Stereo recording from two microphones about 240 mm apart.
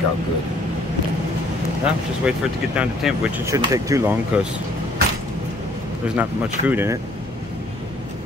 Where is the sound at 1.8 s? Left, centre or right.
Centre.